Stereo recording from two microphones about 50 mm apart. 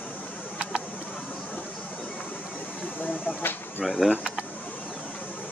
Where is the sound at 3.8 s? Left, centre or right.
Centre.